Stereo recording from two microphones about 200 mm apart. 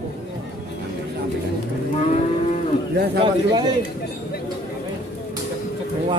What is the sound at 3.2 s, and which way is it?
Speech, 20° right (ahead or behind).